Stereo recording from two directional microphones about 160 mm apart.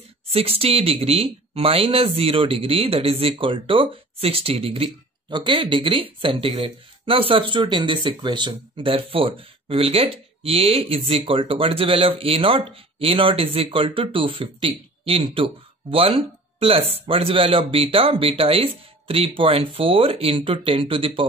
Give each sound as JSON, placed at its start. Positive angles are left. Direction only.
{"t": 0.3, "sound": "speech", "side_deg": -35}